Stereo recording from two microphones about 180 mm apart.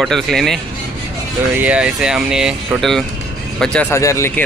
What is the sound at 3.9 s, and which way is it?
Speech, 15° left (ahead or behind).